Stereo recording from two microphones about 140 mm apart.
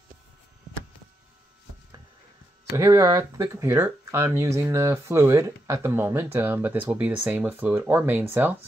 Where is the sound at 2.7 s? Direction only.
25° right (ahead or behind).